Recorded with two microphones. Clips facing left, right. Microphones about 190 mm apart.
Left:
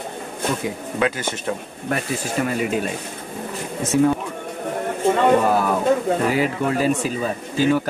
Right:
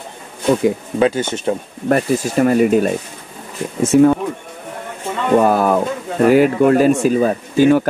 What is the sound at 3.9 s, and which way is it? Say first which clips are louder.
Speech: right 7 dB; 55° right (ahead or behind).